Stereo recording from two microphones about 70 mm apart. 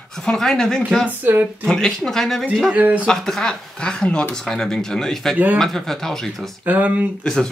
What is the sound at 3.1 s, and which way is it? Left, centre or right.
Speech, centre.